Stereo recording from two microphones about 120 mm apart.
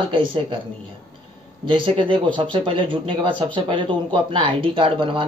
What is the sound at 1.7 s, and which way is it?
Speech, 45° right (ahead or behind).